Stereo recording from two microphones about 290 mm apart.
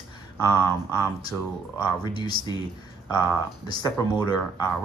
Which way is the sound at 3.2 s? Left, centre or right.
Centre.